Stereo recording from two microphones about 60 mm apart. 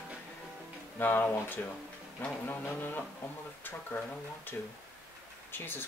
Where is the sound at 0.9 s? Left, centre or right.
Left.